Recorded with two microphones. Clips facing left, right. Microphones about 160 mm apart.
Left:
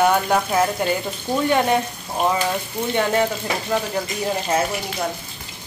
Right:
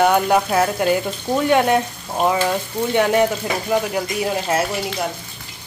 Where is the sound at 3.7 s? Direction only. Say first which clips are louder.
Right 4 dB; 10° right (ahead or behind).